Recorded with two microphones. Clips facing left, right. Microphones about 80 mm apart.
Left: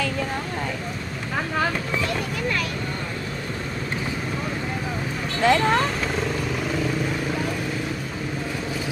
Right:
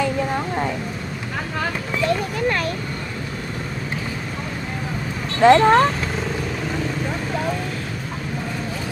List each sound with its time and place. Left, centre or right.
5.4 s speech: right